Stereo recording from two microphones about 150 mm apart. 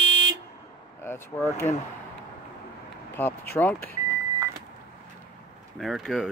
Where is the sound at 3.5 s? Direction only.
15° left (ahead or behind).